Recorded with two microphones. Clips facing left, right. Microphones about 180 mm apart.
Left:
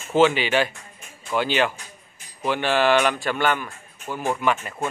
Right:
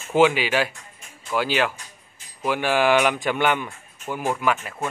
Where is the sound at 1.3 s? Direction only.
5° right (ahead or behind).